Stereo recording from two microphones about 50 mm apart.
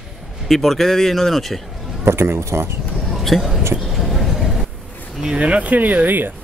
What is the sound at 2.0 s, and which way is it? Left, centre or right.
Speech, right.